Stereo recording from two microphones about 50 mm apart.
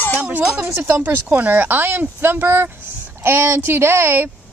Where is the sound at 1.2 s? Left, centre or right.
Right.